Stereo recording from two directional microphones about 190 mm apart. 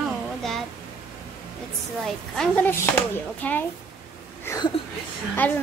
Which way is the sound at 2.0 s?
5° left (ahead or behind).